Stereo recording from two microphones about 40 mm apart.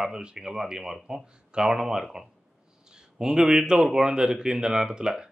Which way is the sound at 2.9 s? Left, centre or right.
Centre.